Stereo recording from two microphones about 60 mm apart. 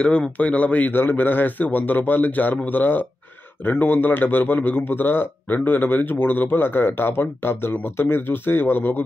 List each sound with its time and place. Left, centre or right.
0.0 s speech: centre
0.9 s a man's voice: left